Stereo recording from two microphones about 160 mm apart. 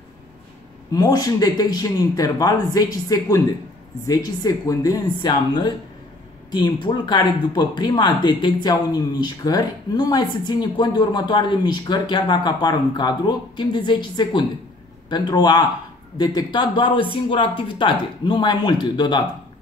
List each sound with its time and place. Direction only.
0.9 s speech: 25° left (ahead or behind)
6.8 s speech: 30° left (ahead or behind)